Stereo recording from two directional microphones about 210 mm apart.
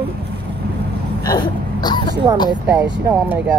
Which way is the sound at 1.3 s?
20° left (ahead or behind).